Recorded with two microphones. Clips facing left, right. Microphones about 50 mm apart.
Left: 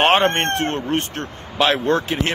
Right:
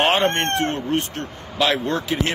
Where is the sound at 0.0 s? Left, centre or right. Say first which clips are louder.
Left 3 dB; left.